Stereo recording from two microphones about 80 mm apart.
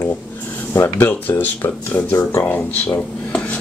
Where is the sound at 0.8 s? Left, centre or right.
Left.